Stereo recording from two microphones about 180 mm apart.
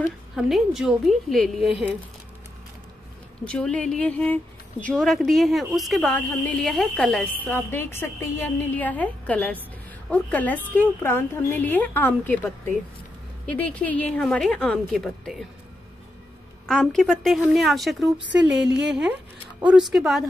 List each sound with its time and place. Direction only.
0.4 s speech: centre (ahead or behind)
3.4 s speech: 5° left (ahead or behind)
16.6 s speech: centre (ahead or behind)
18.2 s a sound: 75° right (ahead or behind)
19.6 s speech: 5° right (ahead or behind)